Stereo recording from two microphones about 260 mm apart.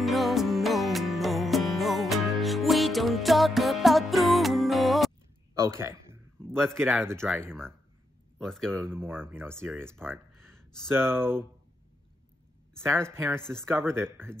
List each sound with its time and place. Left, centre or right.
0.0 s music: centre
5.5 s speech: centre
6.4 s a man's voice: centre
8.9 s speech: centre
9.8 s speech: centre
10.9 s speech: centre
12.8 s speech: centre
13.4 s speech: centre